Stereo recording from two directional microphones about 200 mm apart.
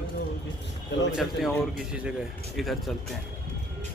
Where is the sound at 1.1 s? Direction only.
5° right (ahead or behind).